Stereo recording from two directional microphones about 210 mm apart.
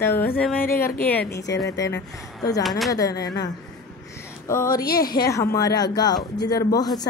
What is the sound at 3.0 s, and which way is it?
Speech, 50° left (ahead or behind).